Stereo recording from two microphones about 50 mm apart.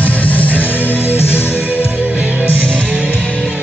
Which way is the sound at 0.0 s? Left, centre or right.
Left.